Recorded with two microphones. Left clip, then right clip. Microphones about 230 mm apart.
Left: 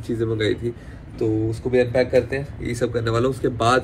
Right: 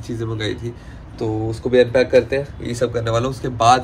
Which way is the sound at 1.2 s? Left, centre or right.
Right.